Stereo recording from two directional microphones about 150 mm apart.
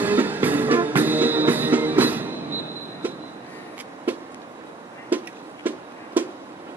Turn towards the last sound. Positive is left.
turn(degrees=-10)  # may be behind; listen again after turning